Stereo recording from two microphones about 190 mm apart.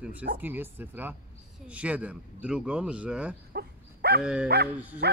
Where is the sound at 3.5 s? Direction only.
60° right (ahead or behind).